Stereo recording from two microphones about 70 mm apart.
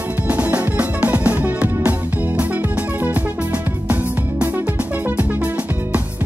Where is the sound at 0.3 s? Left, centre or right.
Right.